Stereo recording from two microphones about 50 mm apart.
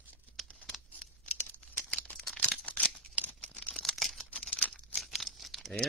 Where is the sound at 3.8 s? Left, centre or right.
Centre.